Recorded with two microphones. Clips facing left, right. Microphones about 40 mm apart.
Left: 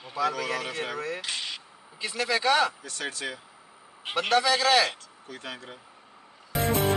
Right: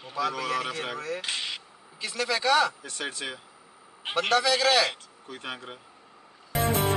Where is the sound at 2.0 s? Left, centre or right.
Centre.